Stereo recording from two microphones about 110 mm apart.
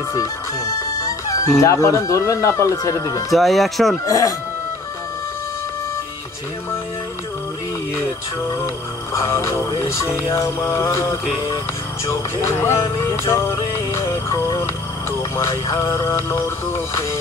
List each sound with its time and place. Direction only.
1.2 s music: 30° left (ahead or behind)
1.6 s speech: 30° left (ahead or behind)
3.3 s speech: centre (ahead or behind)
4.0 s speech: 30° left (ahead or behind)
9.1 s speech: 25° left (ahead or behind)
12.1 s music: 25° left (ahead or behind)